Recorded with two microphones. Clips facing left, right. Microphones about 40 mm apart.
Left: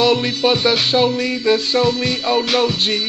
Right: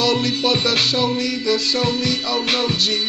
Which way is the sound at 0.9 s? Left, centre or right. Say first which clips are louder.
Left 4 dB; left.